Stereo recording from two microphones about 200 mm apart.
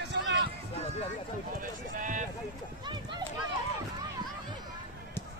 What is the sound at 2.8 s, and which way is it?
Run, 20° right (ahead or behind).